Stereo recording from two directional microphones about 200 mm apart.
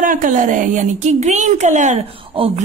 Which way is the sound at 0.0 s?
40° right (ahead or behind).